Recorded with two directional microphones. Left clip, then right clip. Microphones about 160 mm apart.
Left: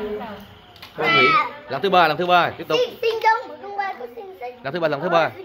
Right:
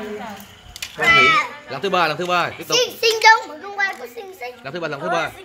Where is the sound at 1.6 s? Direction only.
10° right (ahead or behind).